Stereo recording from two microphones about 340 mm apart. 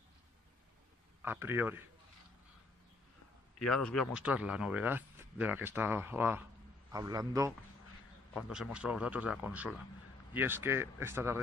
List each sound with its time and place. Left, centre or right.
1.2 s speech: centre
3.6 s speech: centre